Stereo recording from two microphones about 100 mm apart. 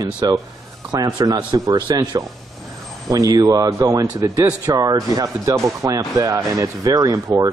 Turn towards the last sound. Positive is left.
turn(degrees=-35)  # may be behind; listen again after turning